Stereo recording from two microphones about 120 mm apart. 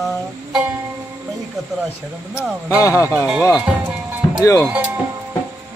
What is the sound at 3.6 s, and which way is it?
Music, 10° right (ahead or behind).